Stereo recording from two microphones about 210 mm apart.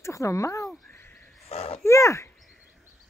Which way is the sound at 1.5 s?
30° left (ahead or behind).